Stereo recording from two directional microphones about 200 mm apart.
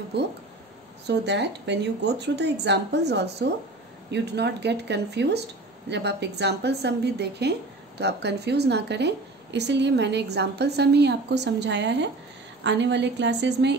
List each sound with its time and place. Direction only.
0.1 s a woman's voice: 55° right (ahead or behind)